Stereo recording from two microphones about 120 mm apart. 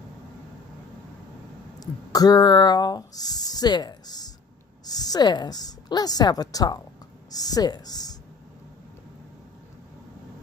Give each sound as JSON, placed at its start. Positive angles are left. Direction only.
{"t": 1.8, "sound": "a woman's voice", "side_deg": 30}